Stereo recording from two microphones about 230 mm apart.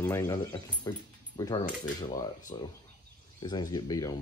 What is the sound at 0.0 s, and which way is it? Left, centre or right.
Speech, centre.